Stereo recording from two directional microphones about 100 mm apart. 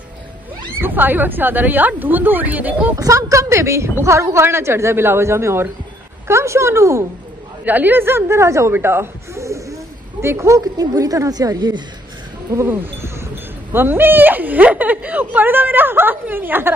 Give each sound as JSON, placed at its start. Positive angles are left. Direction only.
{"t": 0.7, "sound": "a woman's voice", "side_deg": -20}
{"t": 3.0, "sound": "a woman's voice", "side_deg": -35}
{"t": 7.6, "sound": "a woman's voice", "side_deg": -20}
{"t": 12.5, "sound": "a woman's voice", "side_deg": -25}